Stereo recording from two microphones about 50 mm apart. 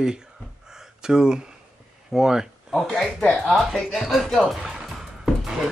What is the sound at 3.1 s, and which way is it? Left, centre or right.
Speech, centre.